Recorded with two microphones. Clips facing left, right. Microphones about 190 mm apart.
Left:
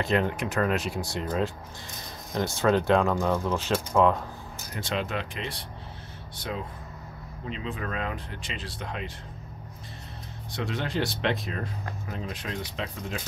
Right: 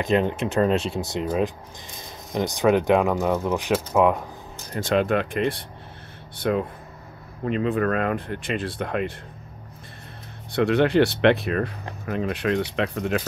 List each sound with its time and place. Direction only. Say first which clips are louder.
0.0 s speech: right 4 dB; 20° right (ahead or behind)
4.7 s speech: right 9 dB; 50° right (ahead or behind)
10.5 s speech: right 12 dB; 65° right (ahead or behind)